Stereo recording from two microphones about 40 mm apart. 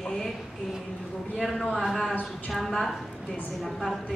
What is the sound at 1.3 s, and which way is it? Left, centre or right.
A man's voice, centre.